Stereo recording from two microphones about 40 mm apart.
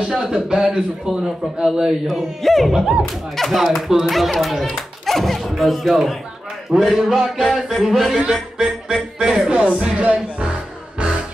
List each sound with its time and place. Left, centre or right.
0.0 s a man's voice: centre
2.4 s speech: centre
8.2 s a man's voice: centre